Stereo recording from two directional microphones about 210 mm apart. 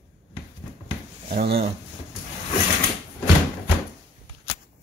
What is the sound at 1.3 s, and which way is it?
Speech, 50° right (ahead or behind).